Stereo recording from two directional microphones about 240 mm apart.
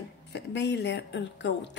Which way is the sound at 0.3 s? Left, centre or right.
Left.